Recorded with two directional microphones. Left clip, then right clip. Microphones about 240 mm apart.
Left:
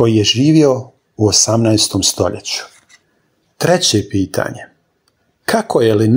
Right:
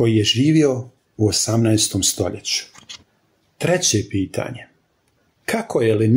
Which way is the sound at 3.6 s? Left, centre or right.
Centre.